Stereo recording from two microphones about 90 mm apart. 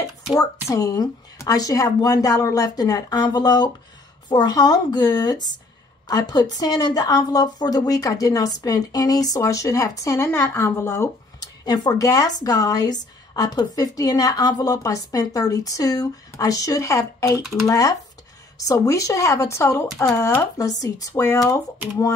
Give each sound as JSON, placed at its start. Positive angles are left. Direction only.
{"t": 0.3, "sound": "a woman's voice", "side_deg": 40}
{"t": 11.3, "sound": "speech", "side_deg": 45}
{"t": 21.1, "sound": "speech", "side_deg": 30}